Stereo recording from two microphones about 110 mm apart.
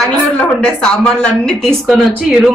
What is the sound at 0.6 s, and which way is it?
Speech, 10° left (ahead or behind).